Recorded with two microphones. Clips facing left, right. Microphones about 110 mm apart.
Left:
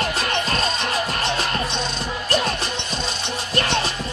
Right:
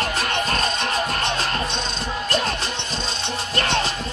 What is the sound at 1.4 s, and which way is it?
Music, 15° left (ahead or behind).